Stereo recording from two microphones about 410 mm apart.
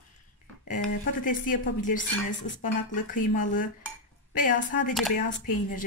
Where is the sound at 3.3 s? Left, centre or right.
Centre.